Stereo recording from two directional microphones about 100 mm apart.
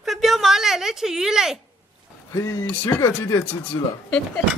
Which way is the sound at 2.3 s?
35° left (ahead or behind).